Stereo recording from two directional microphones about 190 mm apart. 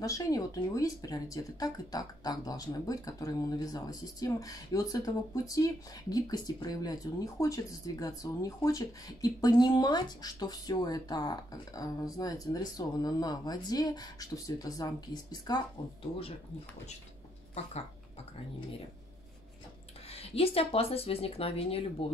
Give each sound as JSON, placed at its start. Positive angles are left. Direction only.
{"t": 0.0, "sound": "speech", "side_deg": 20}
{"t": 20.1, "sound": "speech", "side_deg": 30}